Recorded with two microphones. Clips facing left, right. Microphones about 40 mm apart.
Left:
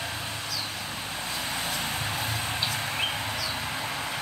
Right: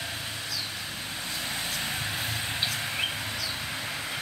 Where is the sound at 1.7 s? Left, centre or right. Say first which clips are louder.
Left 1 dB; centre.